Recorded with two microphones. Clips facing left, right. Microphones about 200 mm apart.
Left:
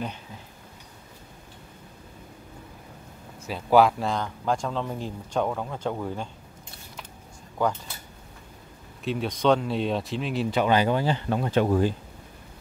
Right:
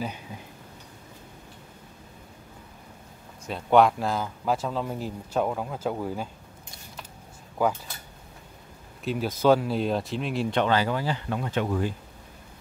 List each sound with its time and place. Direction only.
3.4 s speech: centre (ahead or behind)
7.6 s speech: 5° right (ahead or behind)
9.0 s speech: centre (ahead or behind)
10.7 s speech: 20° left (ahead or behind); by 11.9 s 35° left (ahead or behind)